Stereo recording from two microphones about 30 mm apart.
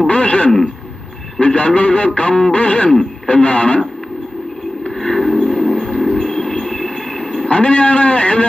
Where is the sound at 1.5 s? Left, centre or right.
Left.